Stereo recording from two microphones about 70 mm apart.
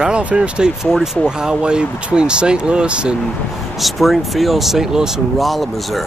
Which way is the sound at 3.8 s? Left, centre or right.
Centre.